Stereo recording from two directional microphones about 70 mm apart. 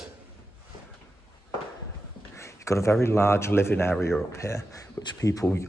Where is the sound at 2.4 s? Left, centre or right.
Left.